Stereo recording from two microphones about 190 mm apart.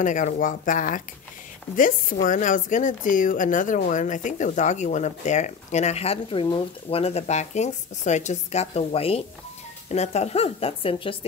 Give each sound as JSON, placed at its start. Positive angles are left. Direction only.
{"t": 0.0, "sound": "speech", "side_deg": 40}